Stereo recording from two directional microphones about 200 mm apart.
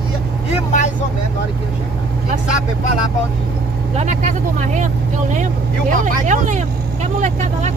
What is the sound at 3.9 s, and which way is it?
Vehicle, 35° right (ahead or behind).